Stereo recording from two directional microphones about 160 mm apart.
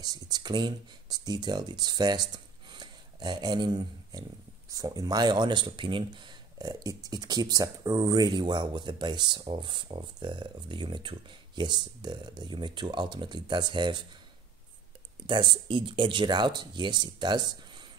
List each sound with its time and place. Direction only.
0.0 s speech: 25° right (ahead or behind)
15.2 s speech: 30° right (ahead or behind)